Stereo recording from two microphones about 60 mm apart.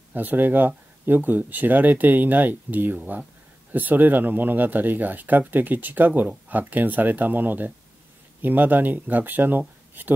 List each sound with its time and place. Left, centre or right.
0.1 s speech: right
3.0 s speech: centre
3.7 s speech: right